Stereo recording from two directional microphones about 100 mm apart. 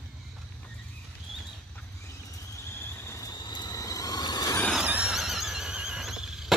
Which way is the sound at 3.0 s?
35° left (ahead or behind).